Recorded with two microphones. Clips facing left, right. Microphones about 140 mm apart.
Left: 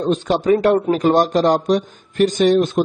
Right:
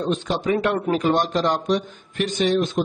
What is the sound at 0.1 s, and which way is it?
Speech, 40° left (ahead or behind).